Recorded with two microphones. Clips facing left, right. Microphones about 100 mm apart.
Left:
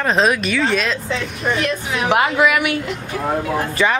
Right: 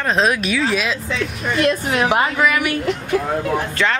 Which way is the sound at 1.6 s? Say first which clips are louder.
Right 4 dB; 45° right (ahead or behind).